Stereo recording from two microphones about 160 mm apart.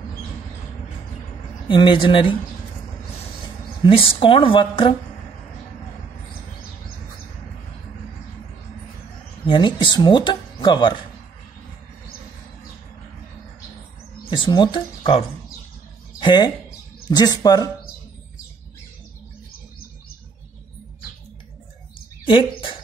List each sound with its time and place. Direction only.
1.7 s a woman's voice: 30° left (ahead or behind)
3.8 s a woman's voice: 35° left (ahead or behind)
9.5 s speech: 30° left (ahead or behind)
14.3 s speech: 30° left (ahead or behind)
22.2 s a sound: 35° left (ahead or behind)